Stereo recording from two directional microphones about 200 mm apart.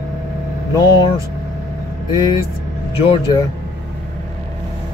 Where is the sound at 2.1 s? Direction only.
20° left (ahead or behind).